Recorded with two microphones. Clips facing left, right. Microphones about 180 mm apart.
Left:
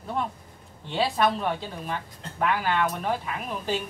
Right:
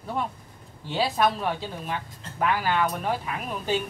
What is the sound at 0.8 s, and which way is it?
A woman's voice, 5° right (ahead or behind).